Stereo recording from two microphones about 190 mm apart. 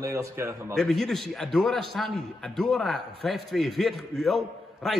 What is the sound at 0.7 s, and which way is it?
A man's voice, 5° left (ahead or behind).